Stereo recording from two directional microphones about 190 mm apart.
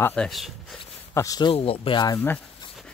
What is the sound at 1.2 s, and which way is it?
Speech, 20° left (ahead or behind).